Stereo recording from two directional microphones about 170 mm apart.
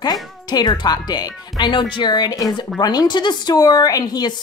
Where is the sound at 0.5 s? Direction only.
25° left (ahead or behind).